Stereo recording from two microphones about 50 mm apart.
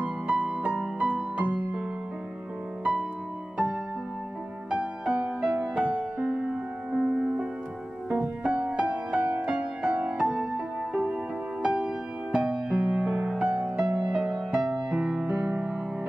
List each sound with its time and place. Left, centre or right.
0.0 s music: right
2.8 s music: right
4.6 s music: right
8.1 s music: right
13.5 s music: right